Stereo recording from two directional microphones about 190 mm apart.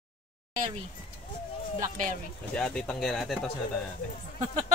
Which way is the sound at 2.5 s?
5° left (ahead or behind).